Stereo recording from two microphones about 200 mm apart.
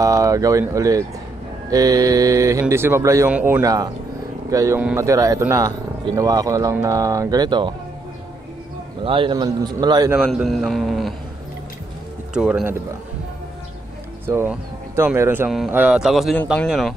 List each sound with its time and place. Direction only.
0.0 s speech: 15° right (ahead or behind)
9.0 s a man's voice: 25° right (ahead or behind)
10.1 s speech: centre (ahead or behind)
12.4 s speech: 5° right (ahead or behind)
14.2 s speech: 10° right (ahead or behind)